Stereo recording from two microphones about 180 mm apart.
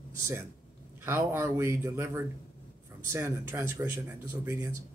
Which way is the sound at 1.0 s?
15° right (ahead or behind).